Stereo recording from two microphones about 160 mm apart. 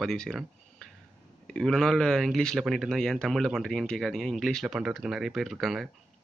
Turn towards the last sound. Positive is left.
turn(degrees=0)  # may be behind; listen again after turning